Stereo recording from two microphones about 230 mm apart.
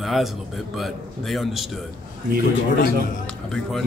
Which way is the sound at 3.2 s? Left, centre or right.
Centre.